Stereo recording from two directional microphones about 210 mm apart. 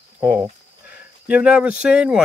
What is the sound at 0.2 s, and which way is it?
Speech, 10° right (ahead or behind).